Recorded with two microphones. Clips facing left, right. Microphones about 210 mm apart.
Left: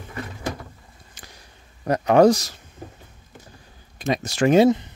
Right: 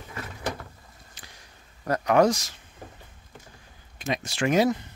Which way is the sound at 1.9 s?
30° left (ahead or behind).